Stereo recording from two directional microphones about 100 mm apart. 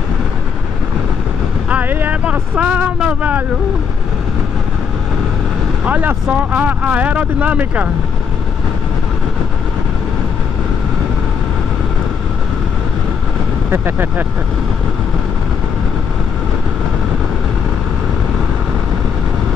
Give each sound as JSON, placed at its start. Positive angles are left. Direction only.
{"t": 1.7, "sound": "vehicle", "side_deg": -15}
{"t": 5.9, "sound": "speech", "side_deg": -15}
{"t": 13.7, "sound": "speech", "side_deg": -20}